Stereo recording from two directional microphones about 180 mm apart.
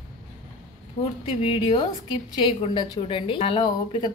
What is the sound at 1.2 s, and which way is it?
A woman's voice, 30° left (ahead or behind).